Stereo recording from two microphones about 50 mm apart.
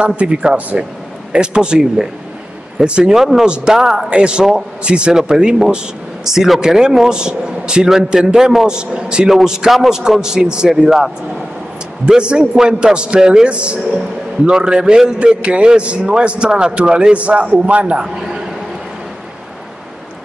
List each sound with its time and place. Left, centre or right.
0.0 s a man's voice: right
12.1 s a man's voice: centre
18.0 s a man's voice: centre